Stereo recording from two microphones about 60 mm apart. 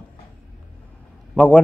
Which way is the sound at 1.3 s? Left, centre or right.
Left.